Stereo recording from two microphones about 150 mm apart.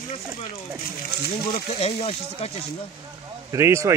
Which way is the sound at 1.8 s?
40° left (ahead or behind).